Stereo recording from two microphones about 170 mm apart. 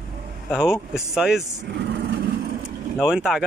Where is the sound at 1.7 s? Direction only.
85° right.